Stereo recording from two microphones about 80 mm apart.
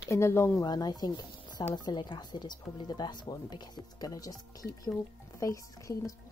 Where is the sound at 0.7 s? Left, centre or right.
Left.